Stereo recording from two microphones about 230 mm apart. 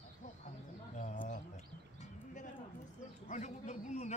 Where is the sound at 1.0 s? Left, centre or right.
Left.